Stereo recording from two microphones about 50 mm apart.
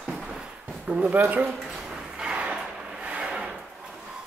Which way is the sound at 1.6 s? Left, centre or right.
Centre.